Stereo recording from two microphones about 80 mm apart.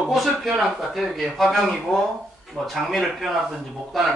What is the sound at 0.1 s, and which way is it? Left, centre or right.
A man's voice, centre.